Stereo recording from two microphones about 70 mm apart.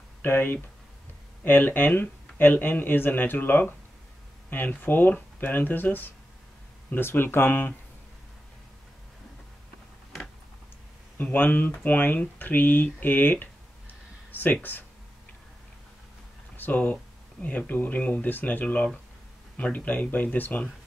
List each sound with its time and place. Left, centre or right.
0.2 s speech: left
11.1 s speech: left
16.5 s speech: left